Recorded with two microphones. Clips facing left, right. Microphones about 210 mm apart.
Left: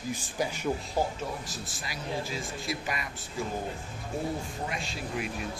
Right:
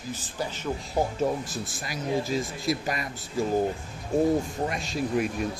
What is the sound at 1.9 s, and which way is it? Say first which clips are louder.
A man's voice: right 7 dB; 40° right (ahead or behind).